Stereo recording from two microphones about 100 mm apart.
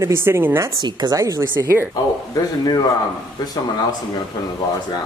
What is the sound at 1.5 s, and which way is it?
Speech, 25° right (ahead or behind).